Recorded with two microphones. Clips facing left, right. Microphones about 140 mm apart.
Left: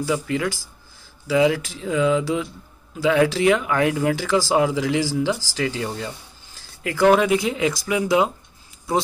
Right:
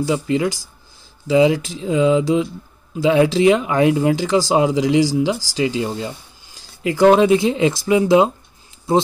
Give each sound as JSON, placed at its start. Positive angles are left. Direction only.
{"t": 0.0, "sound": "speech", "side_deg": -20}